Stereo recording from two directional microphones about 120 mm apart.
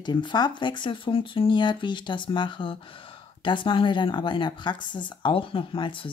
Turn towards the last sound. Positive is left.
turn(degrees=45)  # may be behind; listen again after turning